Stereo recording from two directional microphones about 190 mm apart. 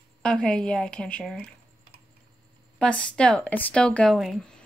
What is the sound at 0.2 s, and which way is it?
A woman's voice, 5° left (ahead or behind).